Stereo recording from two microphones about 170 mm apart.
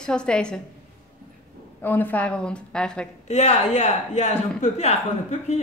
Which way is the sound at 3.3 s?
40° left (ahead or behind).